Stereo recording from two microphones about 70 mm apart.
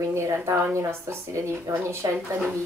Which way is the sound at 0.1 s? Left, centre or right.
Right.